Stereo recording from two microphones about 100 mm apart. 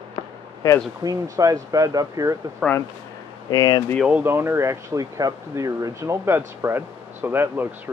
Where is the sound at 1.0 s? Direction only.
35° right (ahead or behind).